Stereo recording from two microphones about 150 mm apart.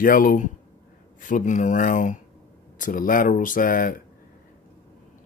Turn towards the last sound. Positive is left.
turn(degrees=65)  # may be behind; listen again after turning